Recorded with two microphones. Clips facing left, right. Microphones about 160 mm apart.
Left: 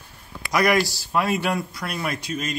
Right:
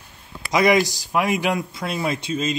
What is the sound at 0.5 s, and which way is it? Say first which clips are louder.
Speech: right 3 dB; 20° right (ahead or behind).